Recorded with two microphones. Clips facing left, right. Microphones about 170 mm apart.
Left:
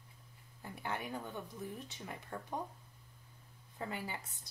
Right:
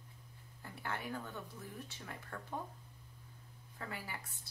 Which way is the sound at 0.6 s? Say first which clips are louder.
Left 2 dB; 20° left (ahead or behind).